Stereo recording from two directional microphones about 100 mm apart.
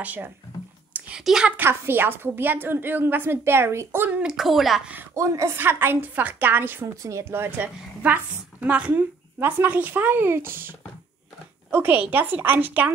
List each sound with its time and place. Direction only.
0.0 s a woman's voice: 15° right (ahead or behind)
0.9 s a sound: 10° right (ahead or behind)
1.6 s a woman's voice: 20° right (ahead or behind)
4.2 s speech: 5° right (ahead or behind)
5.1 s a woman's voice: 30° right (ahead or behind)
11.7 s a woman's voice: 20° right (ahead or behind)